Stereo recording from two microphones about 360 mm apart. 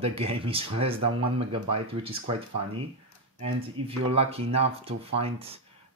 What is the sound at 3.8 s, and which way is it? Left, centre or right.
Speech, centre.